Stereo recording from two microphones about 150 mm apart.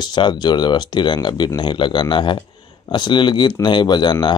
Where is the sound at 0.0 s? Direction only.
30° left (ahead or behind).